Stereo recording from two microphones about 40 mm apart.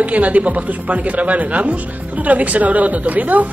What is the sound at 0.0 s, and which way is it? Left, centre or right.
Speech, right.